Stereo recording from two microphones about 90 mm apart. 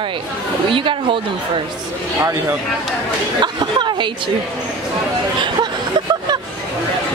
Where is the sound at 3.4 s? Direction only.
55° right (ahead or behind).